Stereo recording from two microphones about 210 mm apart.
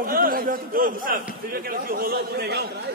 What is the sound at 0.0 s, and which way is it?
A man's voice, 40° right (ahead or behind).